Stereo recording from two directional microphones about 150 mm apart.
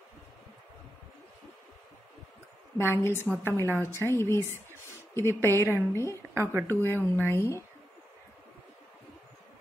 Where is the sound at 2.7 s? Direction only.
15° left (ahead or behind).